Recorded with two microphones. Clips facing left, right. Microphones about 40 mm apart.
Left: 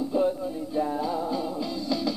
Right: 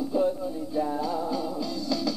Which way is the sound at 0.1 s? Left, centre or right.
Centre.